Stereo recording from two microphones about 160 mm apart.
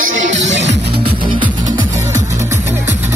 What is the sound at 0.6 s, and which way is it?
Music, 85° right.